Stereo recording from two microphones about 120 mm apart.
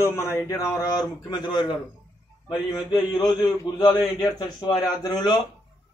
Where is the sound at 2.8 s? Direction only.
35° left (ahead or behind).